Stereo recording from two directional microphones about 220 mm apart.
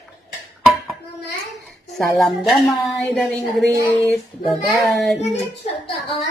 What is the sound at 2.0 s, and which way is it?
A woman's voice, centre (ahead or behind).